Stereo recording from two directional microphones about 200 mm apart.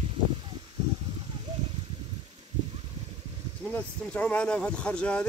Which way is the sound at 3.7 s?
10° left (ahead or behind).